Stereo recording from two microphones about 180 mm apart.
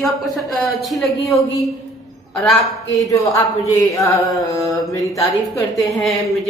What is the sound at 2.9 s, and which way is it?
Mantra, 20° left (ahead or behind).